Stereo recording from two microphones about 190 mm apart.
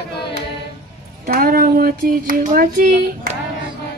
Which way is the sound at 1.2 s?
50° right (ahead or behind).